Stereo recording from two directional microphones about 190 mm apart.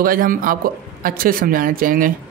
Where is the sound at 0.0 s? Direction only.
50° right (ahead or behind).